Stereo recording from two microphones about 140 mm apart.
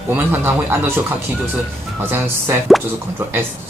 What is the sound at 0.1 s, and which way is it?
Speech, 15° right (ahead or behind).